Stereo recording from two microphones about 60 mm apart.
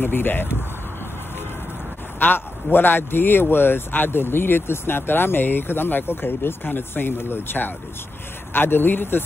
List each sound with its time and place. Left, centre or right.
0.0 s speech: left
2.1 s speech: left